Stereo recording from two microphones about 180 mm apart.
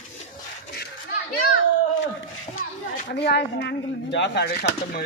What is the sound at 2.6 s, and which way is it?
Speech, 65° left (ahead or behind).